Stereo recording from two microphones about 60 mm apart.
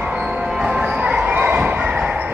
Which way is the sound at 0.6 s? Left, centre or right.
Centre.